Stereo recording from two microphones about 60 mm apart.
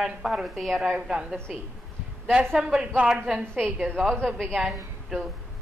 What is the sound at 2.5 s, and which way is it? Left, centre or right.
Speech, centre.